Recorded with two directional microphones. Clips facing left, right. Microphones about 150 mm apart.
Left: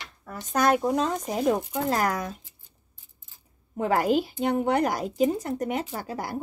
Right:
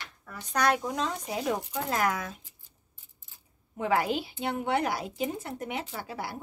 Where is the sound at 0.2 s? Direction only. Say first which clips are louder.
Left 4 dB; 40° left (ahead or behind).